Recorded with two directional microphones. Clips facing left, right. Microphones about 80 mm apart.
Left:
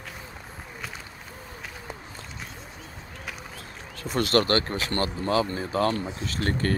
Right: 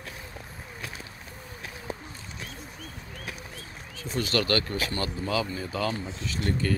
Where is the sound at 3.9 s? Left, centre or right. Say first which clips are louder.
Left 5 dB; left.